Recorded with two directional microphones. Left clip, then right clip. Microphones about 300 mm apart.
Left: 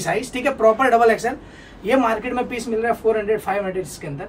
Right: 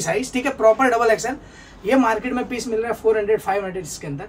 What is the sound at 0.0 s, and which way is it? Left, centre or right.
A man's voice, centre.